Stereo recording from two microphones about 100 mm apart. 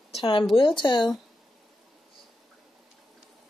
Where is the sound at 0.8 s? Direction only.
50° left (ahead or behind).